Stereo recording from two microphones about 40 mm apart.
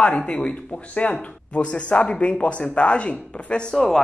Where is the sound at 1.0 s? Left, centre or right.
Left.